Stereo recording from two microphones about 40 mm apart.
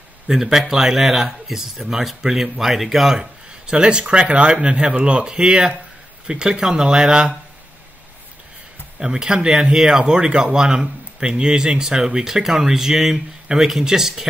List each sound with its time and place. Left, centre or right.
0.3 s speech: centre
3.2 s speech: right
9.0 s speech: centre